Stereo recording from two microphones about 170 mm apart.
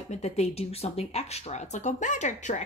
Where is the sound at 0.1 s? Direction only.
40° left (ahead or behind).